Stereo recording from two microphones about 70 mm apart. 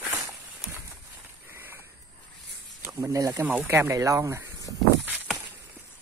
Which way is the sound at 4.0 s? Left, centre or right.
Right.